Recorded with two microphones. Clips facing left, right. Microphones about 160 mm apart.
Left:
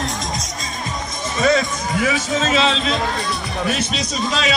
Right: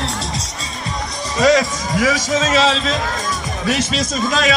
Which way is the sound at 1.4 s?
90° right.